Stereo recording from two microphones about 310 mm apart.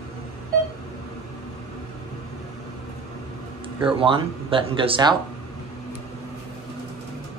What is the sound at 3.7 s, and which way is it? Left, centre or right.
Speech, centre.